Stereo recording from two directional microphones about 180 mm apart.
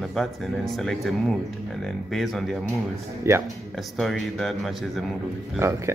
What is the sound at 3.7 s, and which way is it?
A man's voice, centre (ahead or behind).